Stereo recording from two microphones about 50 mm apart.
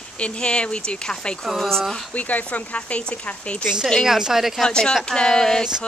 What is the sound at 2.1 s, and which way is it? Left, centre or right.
Speech, left.